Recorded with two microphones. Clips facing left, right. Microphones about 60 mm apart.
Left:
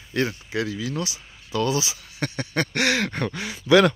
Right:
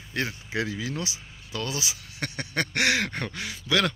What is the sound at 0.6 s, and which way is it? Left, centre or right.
Speech, right.